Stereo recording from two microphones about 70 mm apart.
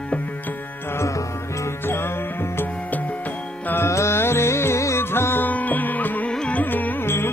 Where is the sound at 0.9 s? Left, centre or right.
Left.